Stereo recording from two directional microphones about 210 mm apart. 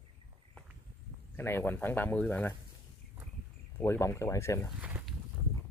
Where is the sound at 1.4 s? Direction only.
10° left (ahead or behind).